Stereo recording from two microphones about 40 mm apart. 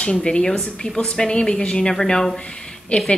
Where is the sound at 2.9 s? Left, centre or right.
Left.